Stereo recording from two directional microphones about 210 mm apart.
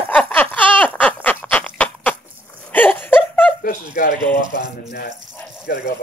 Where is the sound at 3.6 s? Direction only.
40° left (ahead or behind).